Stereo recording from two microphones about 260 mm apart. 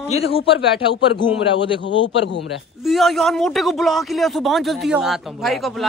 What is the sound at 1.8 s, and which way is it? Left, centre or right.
Speech, left.